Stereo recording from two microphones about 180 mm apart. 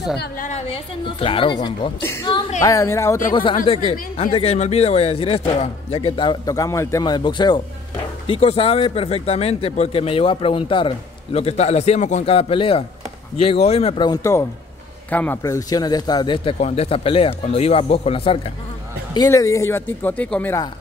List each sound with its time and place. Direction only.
0.4 s a man's voice: 40° left (ahead or behind)
2.0 s speech: 15° left (ahead or behind)
3.7 s a man's voice: 30° left (ahead or behind)
16.5 s speech: 35° left (ahead or behind)
19.1 s speech: 15° left (ahead or behind)